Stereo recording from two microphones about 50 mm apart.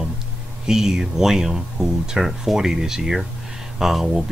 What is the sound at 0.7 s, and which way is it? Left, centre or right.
Speech, centre.